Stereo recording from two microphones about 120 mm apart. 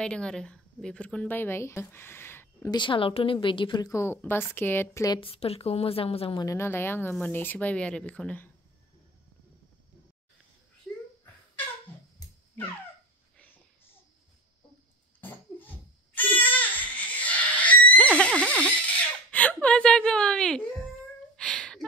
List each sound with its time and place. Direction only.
0.0 s a woman's voice: 5° left (ahead or behind)
2.7 s a woman's voice: 45° left (ahead or behind)
3.9 s speech: 20° left (ahead or behind)
5.2 s a woman's voice: 55° left (ahead or behind)
6.4 s speech: 25° left (ahead or behind)
15.1 s cough: 15° left (ahead or behind)
16.2 s a sound: 15° left (ahead or behind)